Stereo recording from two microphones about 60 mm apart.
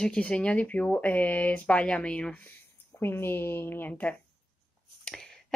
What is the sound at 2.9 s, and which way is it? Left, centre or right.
Speech, left.